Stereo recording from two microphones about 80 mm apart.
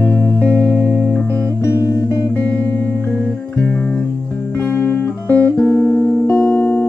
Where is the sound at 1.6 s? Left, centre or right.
Left.